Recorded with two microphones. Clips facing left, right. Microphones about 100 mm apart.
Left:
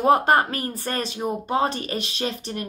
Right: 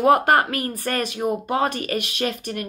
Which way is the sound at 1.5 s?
30° left (ahead or behind).